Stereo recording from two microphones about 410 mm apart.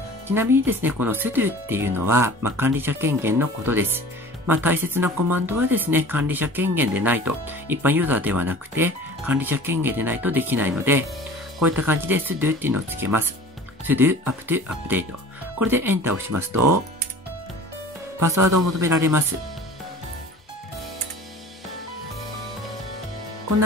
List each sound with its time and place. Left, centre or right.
0.3 s speech: centre
16.5 s speech: right
18.3 s a man's voice: right